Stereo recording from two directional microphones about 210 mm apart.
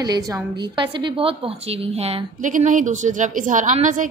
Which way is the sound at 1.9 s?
35° right (ahead or behind).